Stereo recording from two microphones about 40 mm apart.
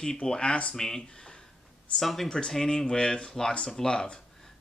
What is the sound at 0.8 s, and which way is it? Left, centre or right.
Speech, centre.